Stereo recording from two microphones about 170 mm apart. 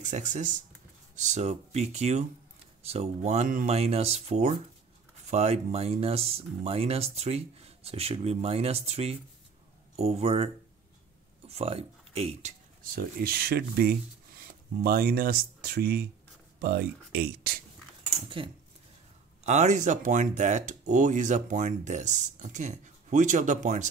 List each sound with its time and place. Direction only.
0.0 s speech: 45° right (ahead or behind)
13.2 s speech: 65° right (ahead or behind)
19.4 s speech: 45° right (ahead or behind)